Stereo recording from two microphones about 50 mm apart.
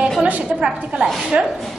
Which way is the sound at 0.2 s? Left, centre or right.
Right.